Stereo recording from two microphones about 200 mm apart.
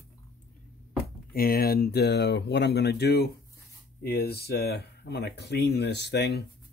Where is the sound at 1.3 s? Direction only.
50° left (ahead or behind).